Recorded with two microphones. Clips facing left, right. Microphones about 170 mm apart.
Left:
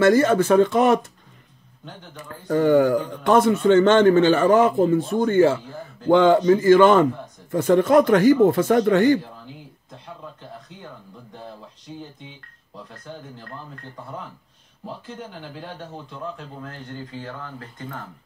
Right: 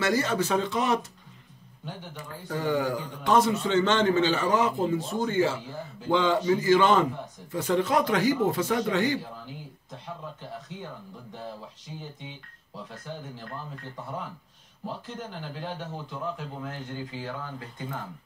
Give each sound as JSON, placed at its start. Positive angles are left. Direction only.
{"t": 0.0, "sound": "a man's voice", "side_deg": 50}
{"t": 2.4, "sound": "a man's voice", "side_deg": 55}
{"t": 12.0, "sound": "speech", "side_deg": 0}
{"t": 14.9, "sound": "speech", "side_deg": 0}